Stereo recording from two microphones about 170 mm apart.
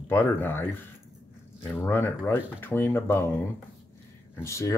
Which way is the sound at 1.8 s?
15° left (ahead or behind).